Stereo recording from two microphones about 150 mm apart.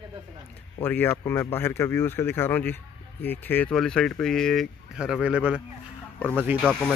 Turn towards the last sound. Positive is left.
turn(degrees=5)  # may be behind; listen again after turning